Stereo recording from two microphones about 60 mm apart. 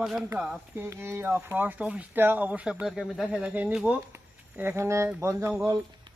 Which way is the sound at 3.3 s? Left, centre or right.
Right.